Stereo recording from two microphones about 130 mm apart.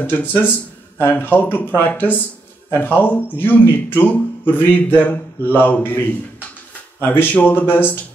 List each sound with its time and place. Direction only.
0.0 s speech: 15° left (ahead or behind)